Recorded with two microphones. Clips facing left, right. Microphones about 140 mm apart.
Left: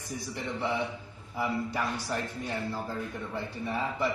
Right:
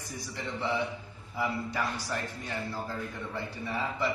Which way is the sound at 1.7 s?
20° left (ahead or behind).